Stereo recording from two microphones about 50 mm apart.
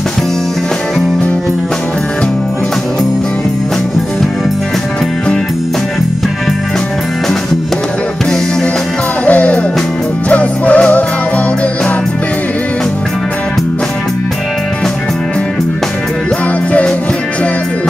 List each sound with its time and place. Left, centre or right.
9.2 s music: left